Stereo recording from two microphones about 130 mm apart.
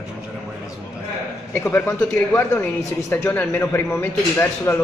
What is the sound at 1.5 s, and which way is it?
A man's voice, 15° left (ahead or behind).